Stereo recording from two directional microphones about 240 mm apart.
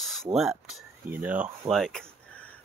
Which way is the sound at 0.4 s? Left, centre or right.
Centre.